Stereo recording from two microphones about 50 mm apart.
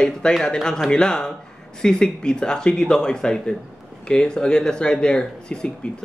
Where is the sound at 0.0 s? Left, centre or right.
Centre.